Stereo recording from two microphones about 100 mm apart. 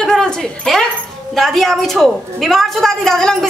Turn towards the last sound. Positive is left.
turn(degrees=5)  # may be behind; listen again after turning